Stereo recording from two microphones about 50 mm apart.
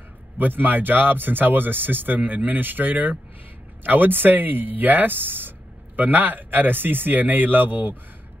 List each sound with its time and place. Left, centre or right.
0.4 s speech: right